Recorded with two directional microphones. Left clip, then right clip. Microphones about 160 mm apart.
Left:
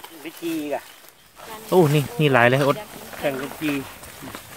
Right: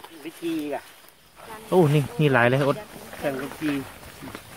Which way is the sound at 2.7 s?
60° left (ahead or behind).